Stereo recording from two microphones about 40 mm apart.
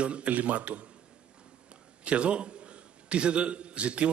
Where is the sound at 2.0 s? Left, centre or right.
Right.